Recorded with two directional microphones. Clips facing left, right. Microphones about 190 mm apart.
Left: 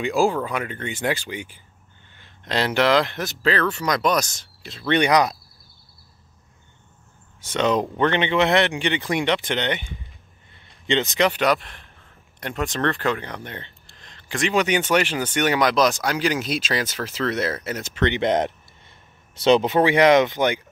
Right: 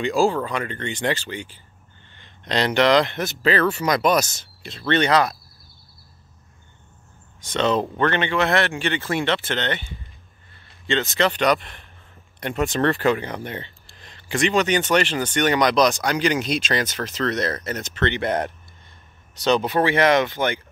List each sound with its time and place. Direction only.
0.0 s speech: 10° left (ahead or behind)
4.8 s speech: 15° left (ahead or behind)
7.5 s speech: 15° left (ahead or behind)
10.5 s a sound: 20° left (ahead or behind)
11.4 s speech: centre (ahead or behind)
14.6 s speech: 10° left (ahead or behind)